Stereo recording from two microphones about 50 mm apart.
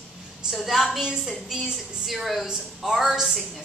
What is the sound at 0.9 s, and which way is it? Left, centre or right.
A woman's voice, centre.